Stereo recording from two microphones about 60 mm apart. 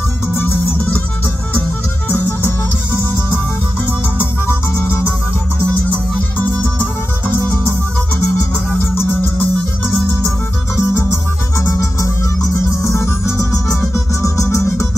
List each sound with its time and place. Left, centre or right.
0.4 s music: left
2.0 s music: left
4.2 s music: left
8.7 s music: left
10.8 s music: left